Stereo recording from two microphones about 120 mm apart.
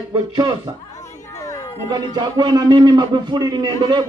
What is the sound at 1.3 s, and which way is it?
Chatter, 25° left (ahead or behind).